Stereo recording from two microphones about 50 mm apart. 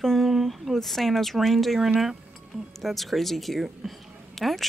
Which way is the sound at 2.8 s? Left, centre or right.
Centre.